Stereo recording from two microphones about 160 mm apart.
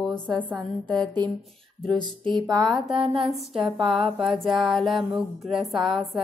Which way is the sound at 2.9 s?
35° right (ahead or behind).